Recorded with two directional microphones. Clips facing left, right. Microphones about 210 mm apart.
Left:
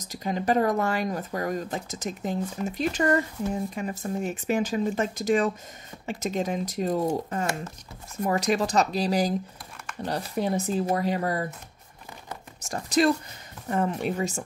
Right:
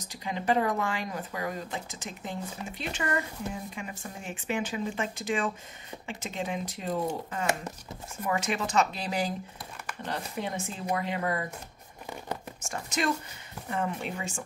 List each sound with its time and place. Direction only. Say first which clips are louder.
0.1 s speech: left 3 dB; 40° left (ahead or behind)
12.6 s speech: left 8 dB; 35° left (ahead or behind)